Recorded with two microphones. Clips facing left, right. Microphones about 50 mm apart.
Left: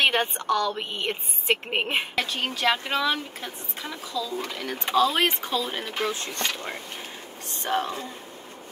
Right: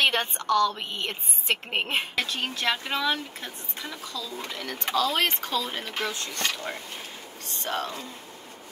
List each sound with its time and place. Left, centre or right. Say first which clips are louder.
0.0 s a woman's voice: left 2 dB; centre
4.6 s a woman's voice: left 4 dB; centre